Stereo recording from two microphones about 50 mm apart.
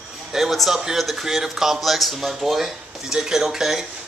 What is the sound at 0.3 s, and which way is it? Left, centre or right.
A man's voice, centre.